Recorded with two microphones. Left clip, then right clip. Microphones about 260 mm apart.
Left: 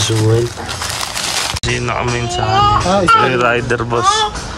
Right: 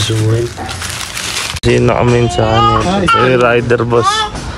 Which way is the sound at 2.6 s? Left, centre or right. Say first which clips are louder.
Left 2 dB; left.